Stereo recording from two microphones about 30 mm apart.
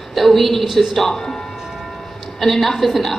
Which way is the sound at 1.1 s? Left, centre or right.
Centre.